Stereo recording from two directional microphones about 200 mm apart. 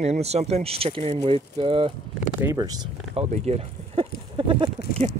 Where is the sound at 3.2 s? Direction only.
30° right (ahead or behind).